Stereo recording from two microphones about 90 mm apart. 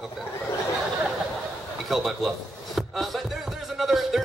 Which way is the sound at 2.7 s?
Centre (ahead or behind).